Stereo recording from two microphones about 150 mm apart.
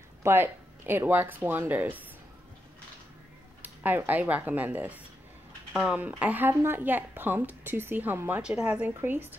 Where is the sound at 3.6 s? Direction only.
10° right (ahead or behind).